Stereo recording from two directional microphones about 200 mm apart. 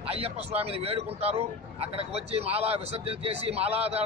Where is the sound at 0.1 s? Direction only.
30° right (ahead or behind).